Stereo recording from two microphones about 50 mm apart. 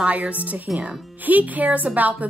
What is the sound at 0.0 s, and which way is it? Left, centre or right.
A woman's voice, right.